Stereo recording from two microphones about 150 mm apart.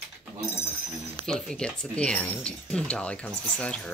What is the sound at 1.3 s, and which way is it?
Speech, 5° left (ahead or behind).